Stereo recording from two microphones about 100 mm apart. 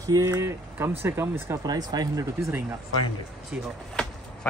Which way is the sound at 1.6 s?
40° right (ahead or behind).